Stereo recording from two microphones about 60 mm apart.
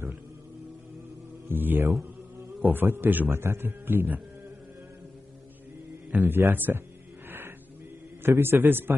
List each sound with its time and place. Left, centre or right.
1.5 s a man's voice: right
3.3 s a man's voice: right
6.1 s a man's voice: right
7.2 s a sound: right
8.2 s a man's voice: right